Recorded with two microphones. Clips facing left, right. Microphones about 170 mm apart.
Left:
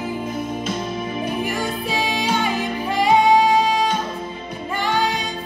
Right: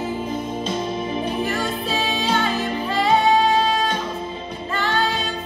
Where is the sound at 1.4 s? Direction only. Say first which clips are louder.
Even; 15° left (ahead or behind).